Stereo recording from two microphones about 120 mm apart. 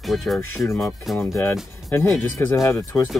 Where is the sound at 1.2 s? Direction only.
20° left (ahead or behind).